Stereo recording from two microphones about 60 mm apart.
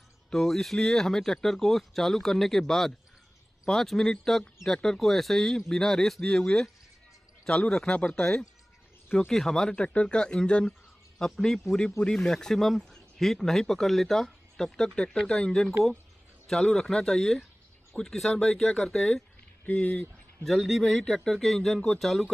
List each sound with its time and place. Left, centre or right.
0.3 s speech: centre
19.6 s speech: left
20.4 s speech: centre